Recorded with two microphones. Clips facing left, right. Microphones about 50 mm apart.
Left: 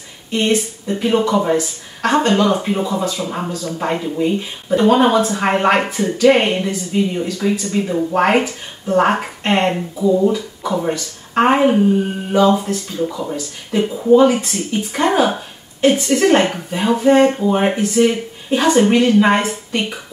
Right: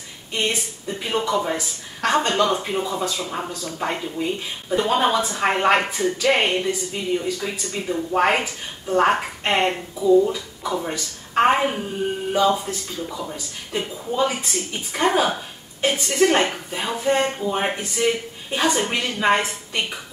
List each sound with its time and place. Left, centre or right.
0.5 s a woman's voice: centre
10.3 s a woman's voice: centre
14.2 s a woman's voice: centre
17.6 s speech: centre